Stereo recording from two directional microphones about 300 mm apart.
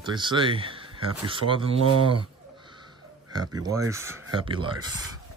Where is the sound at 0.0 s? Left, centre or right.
Centre.